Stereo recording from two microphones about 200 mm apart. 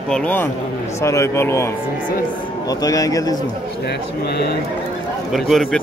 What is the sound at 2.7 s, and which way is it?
Speech, 15° left (ahead or behind).